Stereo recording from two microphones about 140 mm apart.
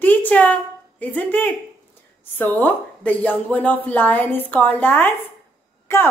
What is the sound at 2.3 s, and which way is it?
Speech, 15° left (ahead or behind).